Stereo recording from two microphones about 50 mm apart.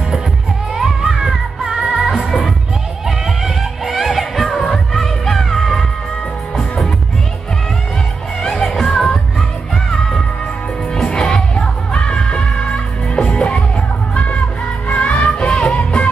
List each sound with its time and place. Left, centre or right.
0.7 s music: centre
8.4 s music: centre; by 15.2 s left
15.2 s music: centre